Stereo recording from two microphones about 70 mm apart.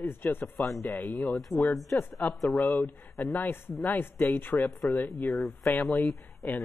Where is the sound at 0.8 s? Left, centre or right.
Left.